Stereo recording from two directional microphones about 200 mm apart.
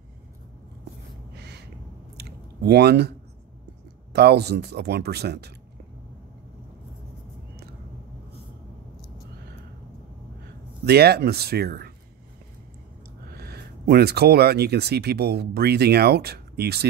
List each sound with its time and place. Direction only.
1.3 s a sound: 55° right (ahead or behind)
2.1 s chewing: 55° right (ahead or behind)
4.1 s speech: 55° right (ahead or behind)
10.9 s speech: 55° right (ahead or behind)
13.4 s speech: 50° right (ahead or behind)